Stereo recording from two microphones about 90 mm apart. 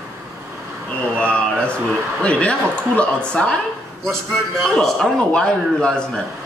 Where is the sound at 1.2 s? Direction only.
10° left (ahead or behind).